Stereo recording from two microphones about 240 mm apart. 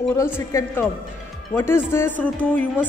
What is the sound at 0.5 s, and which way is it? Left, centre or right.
Speech, centre.